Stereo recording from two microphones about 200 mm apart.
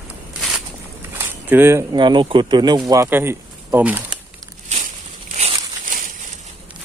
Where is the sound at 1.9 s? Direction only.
25° right (ahead or behind).